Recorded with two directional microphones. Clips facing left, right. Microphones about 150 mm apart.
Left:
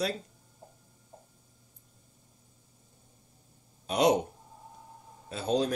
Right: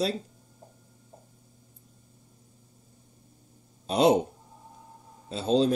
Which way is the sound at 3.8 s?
30° right (ahead or behind).